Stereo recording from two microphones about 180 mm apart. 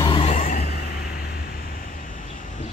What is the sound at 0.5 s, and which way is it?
Vehicle, 60° left (ahead or behind).